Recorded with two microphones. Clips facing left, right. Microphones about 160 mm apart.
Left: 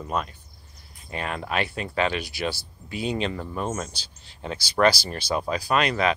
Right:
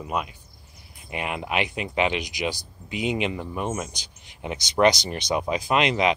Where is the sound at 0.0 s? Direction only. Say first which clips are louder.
Even; 10° right (ahead or behind).